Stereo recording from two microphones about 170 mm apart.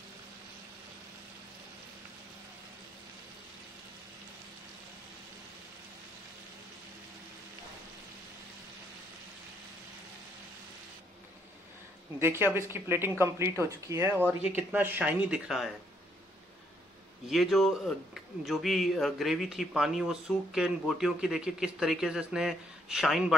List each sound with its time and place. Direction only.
12.2 s speech: 15° right (ahead or behind)
17.3 s speech: centre (ahead or behind)